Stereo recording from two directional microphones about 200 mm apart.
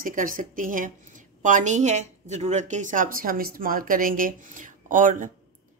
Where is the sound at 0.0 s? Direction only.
40° right (ahead or behind).